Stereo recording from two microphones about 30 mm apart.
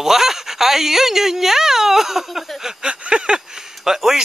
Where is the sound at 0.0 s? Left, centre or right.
Centre.